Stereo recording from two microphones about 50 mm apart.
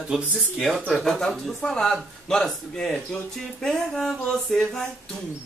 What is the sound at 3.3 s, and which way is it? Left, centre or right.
Speech, centre.